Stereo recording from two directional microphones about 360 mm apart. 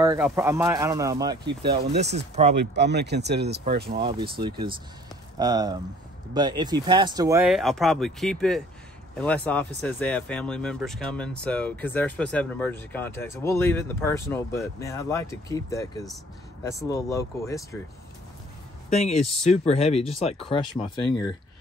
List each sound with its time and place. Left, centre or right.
0.0 s speech: centre
1.6 s speech: right
4.0 s speech: centre
18.9 s speech: centre